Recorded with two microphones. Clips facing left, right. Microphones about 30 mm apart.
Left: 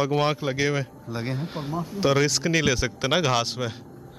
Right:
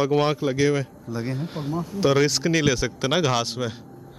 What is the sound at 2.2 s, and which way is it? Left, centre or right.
Speech, centre.